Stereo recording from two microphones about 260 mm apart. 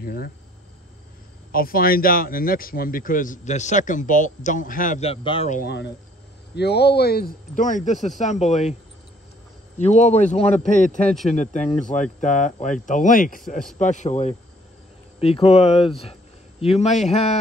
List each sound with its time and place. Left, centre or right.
0.0 s speech: left
1.5 s speech: left
5.6 s speech: left
9.8 s a man's voice: left